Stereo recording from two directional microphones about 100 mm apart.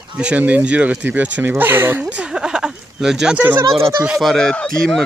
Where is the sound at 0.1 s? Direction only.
10° right (ahead or behind).